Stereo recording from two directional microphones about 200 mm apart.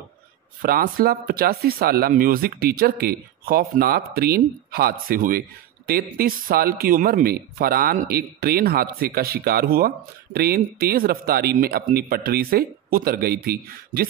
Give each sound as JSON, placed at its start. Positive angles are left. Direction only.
{"t": 0.6, "sound": "speech", "side_deg": -45}